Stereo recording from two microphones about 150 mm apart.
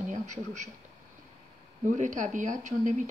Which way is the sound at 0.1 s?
55° right (ahead or behind).